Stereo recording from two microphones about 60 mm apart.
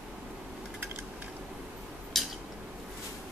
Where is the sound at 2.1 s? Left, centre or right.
Centre.